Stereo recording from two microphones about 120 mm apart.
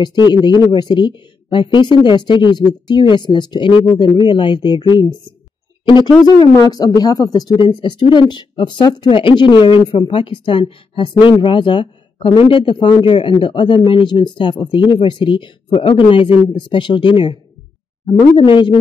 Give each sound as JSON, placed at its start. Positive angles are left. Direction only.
{"t": 0.0, "sound": "a man's voice", "side_deg": 40}